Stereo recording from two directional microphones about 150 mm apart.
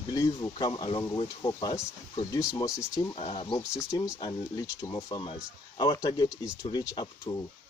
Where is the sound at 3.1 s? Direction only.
35° left (ahead or behind).